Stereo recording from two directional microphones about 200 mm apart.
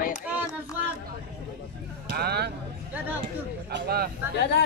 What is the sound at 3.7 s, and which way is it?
Speech, 50° right (ahead or behind).